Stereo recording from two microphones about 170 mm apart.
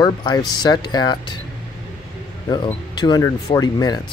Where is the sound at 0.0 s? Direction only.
25° left (ahead or behind).